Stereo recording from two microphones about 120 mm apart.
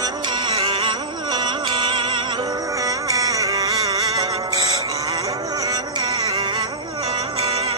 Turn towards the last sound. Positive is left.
turn(degrees=-55)  # may be behind; listen again after turning